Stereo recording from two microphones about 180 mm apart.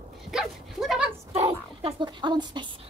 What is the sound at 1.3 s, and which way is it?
A woman's voice, 30° right (ahead or behind).